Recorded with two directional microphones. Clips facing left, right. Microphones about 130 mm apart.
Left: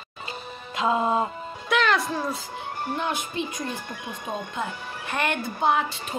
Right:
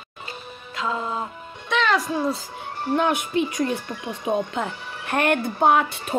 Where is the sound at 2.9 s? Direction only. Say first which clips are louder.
Right 9 dB; 60° right (ahead or behind).